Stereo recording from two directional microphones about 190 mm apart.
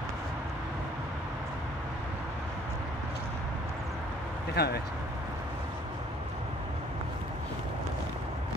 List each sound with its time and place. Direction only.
4.6 s speech: 55° left (ahead or behind)